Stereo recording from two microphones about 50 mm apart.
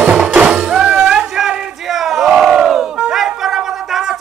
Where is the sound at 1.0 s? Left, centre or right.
Centre.